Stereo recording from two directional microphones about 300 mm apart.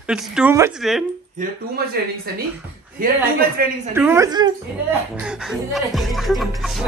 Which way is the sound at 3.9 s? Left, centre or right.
Centre.